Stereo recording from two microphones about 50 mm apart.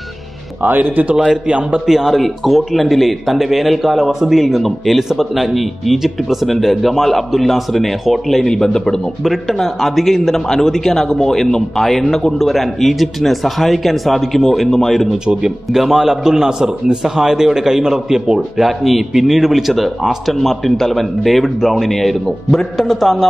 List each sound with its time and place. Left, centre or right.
0.6 s speech: right
1.1 s a man's voice: centre
1.5 s a man's voice: right
1.9 s speech: centre
9.2 s speech: centre
15.2 s a man's voice: centre